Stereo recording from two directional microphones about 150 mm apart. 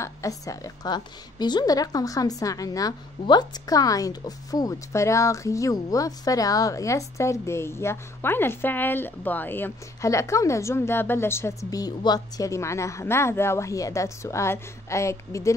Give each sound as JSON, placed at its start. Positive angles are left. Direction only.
{"t": 0.0, "sound": "a woman's voice", "side_deg": 20}